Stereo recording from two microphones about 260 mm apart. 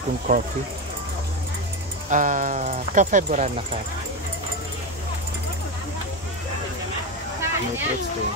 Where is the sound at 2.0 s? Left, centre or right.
Right.